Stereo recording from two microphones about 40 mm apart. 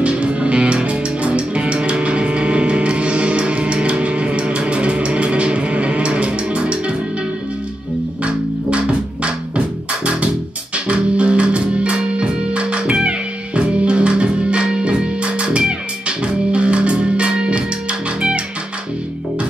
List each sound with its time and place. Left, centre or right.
0.0 s music: right
8.2 s music: right
10.9 s music: right